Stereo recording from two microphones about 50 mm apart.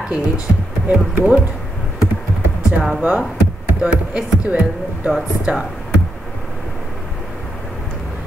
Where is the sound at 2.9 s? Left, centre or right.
Right.